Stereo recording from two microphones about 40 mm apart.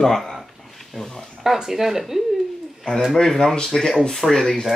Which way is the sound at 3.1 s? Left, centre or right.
Centre.